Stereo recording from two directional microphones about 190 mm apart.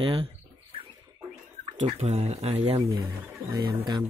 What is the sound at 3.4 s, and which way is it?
Speech, 20° right (ahead or behind).